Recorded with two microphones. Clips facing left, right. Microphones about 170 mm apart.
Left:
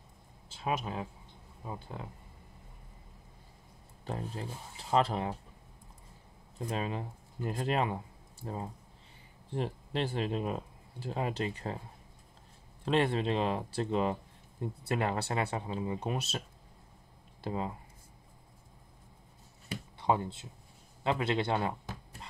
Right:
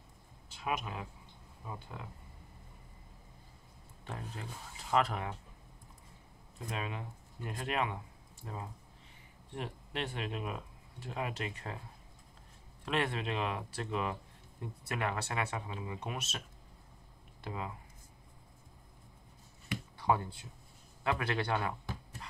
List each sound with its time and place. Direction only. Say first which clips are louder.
0.5 s speech: left 3 dB; 30° left (ahead or behind)
4.0 s speech: left 6 dB; 35° left (ahead or behind)
6.7 s speech: left 5 dB; 35° left (ahead or behind)
12.8 s speech: left 6 dB; 30° left (ahead or behind)
19.7 s a sound: left 1 dB; 25° left (ahead or behind)